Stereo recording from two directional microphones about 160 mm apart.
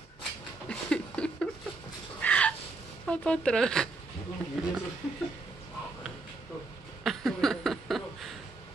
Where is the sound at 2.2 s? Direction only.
10° left (ahead or behind).